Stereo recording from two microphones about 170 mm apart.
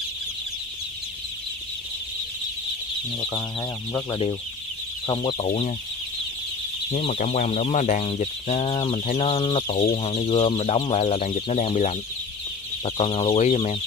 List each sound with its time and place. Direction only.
3.2 s speech: 25° left (ahead or behind)
5.0 s speech: 30° left (ahead or behind)
6.9 s speech: 45° left (ahead or behind)
8.0 s speech: 35° left (ahead or behind)